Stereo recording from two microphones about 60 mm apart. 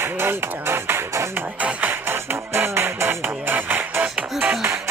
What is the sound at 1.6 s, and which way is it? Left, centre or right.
Music, right.